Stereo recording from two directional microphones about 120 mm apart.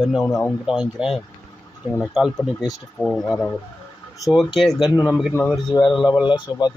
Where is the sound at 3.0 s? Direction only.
10° left (ahead or behind).